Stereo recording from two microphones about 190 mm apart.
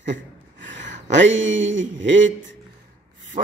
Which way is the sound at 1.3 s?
85° right.